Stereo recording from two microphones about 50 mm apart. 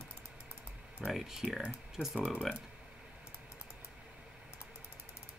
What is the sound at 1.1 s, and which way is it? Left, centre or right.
Speech, centre.